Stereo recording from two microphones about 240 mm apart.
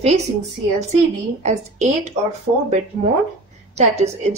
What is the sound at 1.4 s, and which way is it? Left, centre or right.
Speech, right.